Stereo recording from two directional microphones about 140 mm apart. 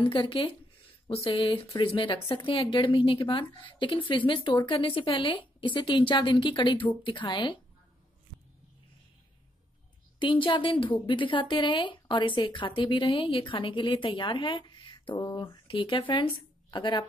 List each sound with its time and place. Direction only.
0.0 s a woman's voice: 40° left (ahead or behind)
10.1 s a woman's voice: 35° left (ahead or behind)